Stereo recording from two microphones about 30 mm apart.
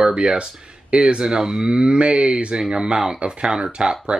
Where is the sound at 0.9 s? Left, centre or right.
Right.